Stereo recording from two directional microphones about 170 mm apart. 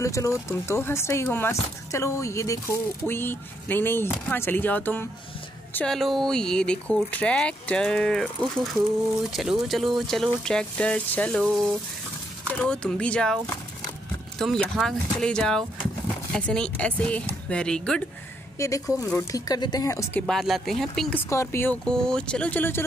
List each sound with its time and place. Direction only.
0.0 s speech: 20° left (ahead or behind)
14.4 s speech: centre (ahead or behind)
18.6 s speech: 20° left (ahead or behind)
20.2 s speech: centre (ahead or behind)